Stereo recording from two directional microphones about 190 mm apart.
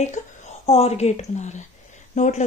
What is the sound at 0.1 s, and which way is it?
A woman's voice, 35° left (ahead or behind).